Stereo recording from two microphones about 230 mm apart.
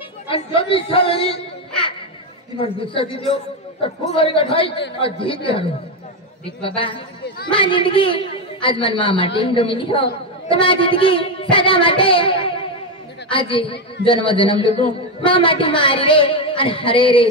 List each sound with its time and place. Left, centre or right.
0.3 s speech: left
2.5 s speech: left